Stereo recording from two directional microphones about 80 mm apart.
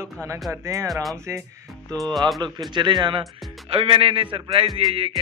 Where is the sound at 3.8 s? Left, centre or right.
Right.